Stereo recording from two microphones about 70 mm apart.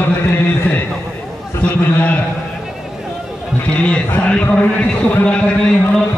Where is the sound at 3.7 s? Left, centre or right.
Centre.